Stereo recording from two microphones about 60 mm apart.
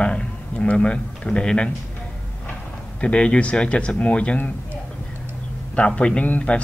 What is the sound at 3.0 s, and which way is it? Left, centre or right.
A man's voice, centre.